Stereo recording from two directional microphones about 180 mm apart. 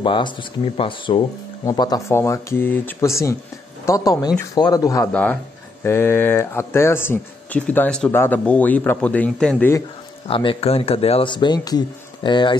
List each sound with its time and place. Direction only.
0.0 s speech: 25° left (ahead or behind)
5.1 s speech: 10° left (ahead or behind)
10.2 s speech: 30° left (ahead or behind)